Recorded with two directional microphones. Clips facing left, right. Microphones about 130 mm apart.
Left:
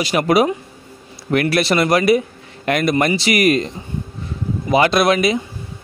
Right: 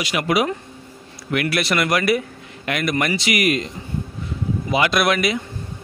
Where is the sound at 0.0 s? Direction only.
35° left (ahead or behind).